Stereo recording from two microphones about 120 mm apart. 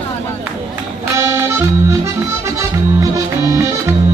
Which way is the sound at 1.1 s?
20° right (ahead or behind).